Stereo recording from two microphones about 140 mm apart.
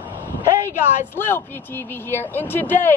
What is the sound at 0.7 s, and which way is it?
A woman's voice, 15° left (ahead or behind).